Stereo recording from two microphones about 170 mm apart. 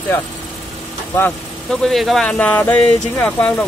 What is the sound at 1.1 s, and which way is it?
Speech, 5° left (ahead or behind).